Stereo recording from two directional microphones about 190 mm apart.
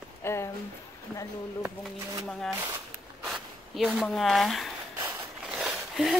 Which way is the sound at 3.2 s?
Centre (ahead or behind).